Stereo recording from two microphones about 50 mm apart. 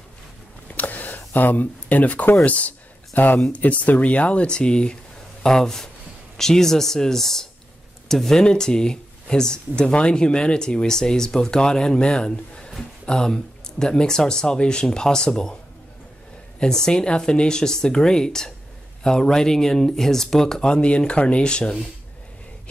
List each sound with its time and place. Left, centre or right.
0.7 s a sound: left
2.4 s speech: left
16.5 s speech: centre